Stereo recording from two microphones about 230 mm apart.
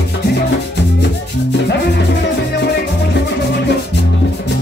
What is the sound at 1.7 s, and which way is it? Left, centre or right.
Music, left.